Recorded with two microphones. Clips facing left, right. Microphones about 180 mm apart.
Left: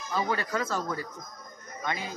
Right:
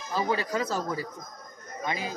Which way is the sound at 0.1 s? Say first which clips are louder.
Right 2 dB; 15° right (ahead or behind).